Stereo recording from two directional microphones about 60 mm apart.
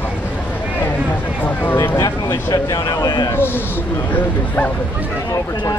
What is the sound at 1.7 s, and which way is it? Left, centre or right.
Speech, left.